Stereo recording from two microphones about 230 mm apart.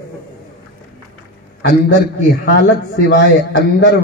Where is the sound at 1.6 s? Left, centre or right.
Left.